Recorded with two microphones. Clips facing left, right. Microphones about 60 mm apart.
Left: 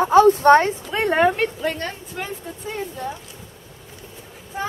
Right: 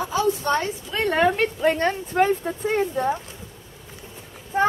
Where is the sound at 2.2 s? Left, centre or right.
Right.